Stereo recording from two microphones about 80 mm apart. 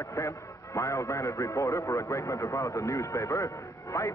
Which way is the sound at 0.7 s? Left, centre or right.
Left.